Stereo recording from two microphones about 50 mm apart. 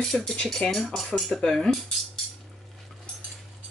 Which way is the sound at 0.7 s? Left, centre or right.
Centre.